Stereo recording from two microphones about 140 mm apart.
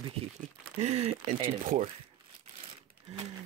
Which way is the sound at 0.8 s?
50° right (ahead or behind).